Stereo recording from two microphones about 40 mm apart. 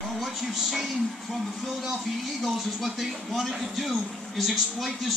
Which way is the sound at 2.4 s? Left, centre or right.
Centre.